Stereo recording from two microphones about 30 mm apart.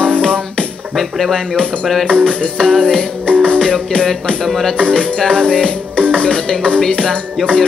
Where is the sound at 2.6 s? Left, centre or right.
Left.